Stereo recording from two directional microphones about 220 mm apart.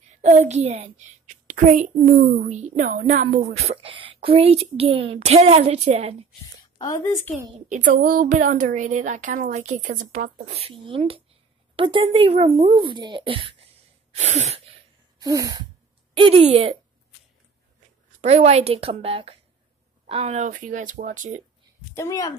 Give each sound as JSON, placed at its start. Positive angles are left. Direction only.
{"t": 0.2, "sound": "a child's voice", "side_deg": -30}
{"t": 6.8, "sound": "a woman's voice", "side_deg": 15}
{"t": 7.5, "sound": "a child's voice", "side_deg": -35}
{"t": 15.1, "sound": "a sound", "side_deg": -15}
{"t": 16.2, "sound": "speech", "side_deg": -25}
{"t": 18.2, "sound": "a child's voice", "side_deg": -30}
{"t": 21.9, "sound": "a woman's voice", "side_deg": 15}